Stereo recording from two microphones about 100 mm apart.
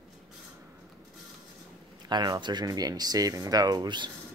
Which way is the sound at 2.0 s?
45° right (ahead or behind).